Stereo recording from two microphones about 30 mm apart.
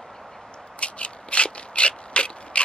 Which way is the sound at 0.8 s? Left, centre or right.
Left.